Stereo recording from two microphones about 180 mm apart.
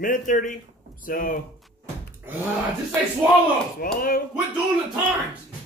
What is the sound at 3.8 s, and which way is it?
Speech, 55° left (ahead or behind).